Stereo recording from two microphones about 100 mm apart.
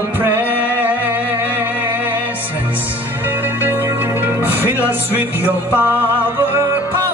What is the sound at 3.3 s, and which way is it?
Music, 20° right (ahead or behind).